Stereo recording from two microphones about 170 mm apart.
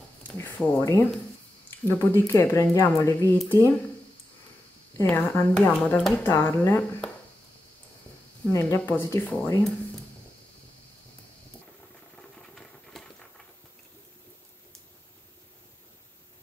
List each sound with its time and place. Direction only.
0.4 s speech: 10° left (ahead or behind)
4.9 s speech: 15° left (ahead or behind)
8.5 s speech: 15° left (ahead or behind)
12.2 s a sound: 5° left (ahead or behind)